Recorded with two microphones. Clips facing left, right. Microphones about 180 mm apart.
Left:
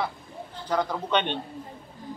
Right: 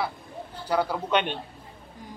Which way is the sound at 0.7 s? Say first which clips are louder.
Right 1 dB; 10° right (ahead or behind).